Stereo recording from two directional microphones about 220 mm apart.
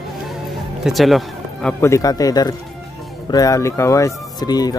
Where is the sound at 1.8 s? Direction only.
15° left (ahead or behind).